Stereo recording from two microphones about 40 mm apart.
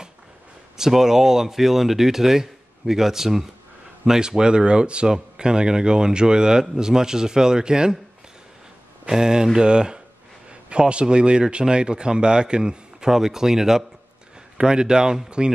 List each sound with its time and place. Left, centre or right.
0.7 s speech: centre
9.1 s speech: centre